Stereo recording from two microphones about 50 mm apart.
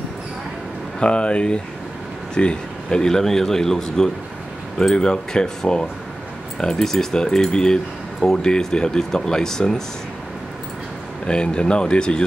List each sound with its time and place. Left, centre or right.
0.9 s speech: left
11.2 s speech: centre